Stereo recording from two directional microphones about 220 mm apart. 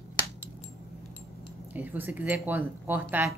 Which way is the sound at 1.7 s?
10° right (ahead or behind).